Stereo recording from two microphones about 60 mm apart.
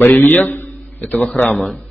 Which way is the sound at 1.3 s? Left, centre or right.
Left.